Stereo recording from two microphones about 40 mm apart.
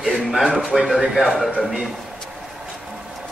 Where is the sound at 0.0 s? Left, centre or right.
Centre.